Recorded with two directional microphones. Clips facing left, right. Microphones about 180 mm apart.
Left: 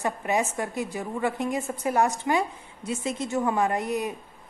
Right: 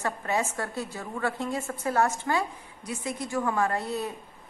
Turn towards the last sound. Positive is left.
turn(degrees=15)  # may be behind; listen again after turning